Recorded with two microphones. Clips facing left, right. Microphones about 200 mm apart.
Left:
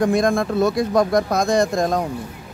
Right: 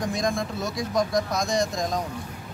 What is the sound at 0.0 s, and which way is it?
Speech, 55° left (ahead or behind).